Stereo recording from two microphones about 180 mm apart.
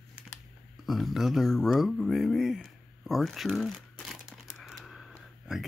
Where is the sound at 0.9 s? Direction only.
Centre (ahead or behind).